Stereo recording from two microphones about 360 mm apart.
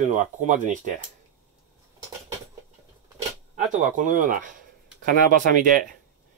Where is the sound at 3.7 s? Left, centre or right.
Right.